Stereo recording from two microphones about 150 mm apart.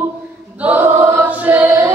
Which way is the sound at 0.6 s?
10° right (ahead or behind).